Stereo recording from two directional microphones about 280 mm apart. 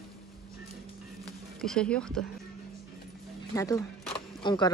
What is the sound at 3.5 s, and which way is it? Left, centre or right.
Speech, centre.